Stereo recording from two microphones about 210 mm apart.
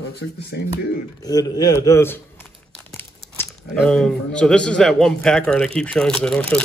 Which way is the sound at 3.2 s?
5° left (ahead or behind).